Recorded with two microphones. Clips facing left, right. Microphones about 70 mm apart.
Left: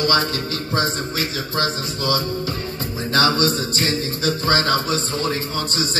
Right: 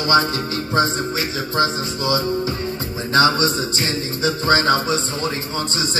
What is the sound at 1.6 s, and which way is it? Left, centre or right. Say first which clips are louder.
Music: right 4 dB; right.